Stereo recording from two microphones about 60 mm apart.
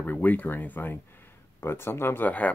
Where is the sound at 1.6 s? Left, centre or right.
Left.